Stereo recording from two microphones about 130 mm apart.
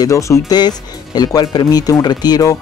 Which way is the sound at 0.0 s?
25° left (ahead or behind).